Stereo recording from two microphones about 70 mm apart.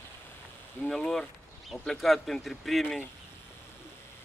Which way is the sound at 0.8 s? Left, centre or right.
Centre.